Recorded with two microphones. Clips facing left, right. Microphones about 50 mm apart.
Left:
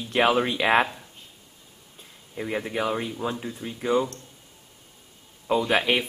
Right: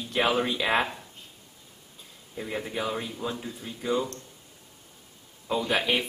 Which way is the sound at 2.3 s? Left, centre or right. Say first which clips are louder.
Left 4 dB; left.